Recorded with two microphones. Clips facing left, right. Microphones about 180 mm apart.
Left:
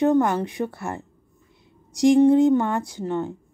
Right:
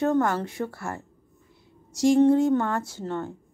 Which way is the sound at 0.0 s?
15° left (ahead or behind).